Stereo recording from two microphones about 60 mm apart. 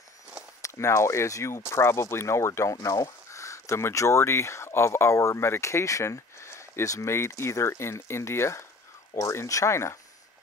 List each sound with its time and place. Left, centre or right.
0.6 s speech: left